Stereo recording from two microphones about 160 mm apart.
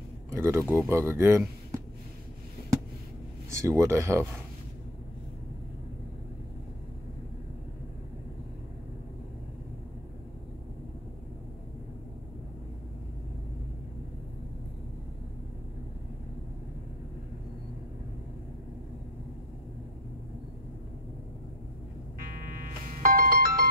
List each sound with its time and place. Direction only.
0.3 s speech: 15° right (ahead or behind)
3.5 s speech: 20° right (ahead or behind)
22.2 s music: 65° right (ahead or behind)